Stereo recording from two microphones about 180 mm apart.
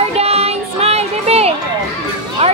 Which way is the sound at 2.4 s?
35° right (ahead or behind).